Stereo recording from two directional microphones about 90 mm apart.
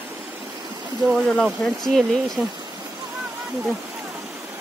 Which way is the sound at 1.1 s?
5° left (ahead or behind).